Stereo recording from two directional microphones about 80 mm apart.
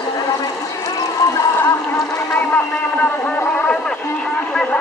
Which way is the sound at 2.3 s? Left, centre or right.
Left.